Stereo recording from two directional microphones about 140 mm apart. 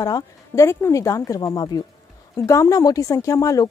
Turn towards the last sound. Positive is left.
turn(degrees=25)  # may be behind; listen again after turning